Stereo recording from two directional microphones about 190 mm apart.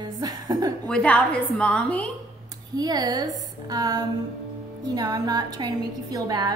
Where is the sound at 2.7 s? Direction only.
20° right (ahead or behind).